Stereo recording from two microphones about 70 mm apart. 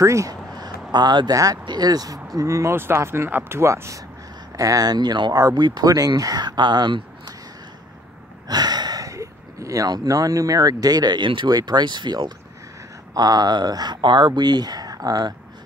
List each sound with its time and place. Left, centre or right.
0.0 s speech: right
0.6 s speech: right
2.4 s speech: right
4.6 s speech: right
8.5 s gasp: right
9.8 s speech: right
13.1 s speech: right